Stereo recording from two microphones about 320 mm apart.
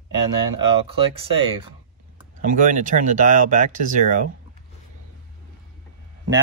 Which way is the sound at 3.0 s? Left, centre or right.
Right.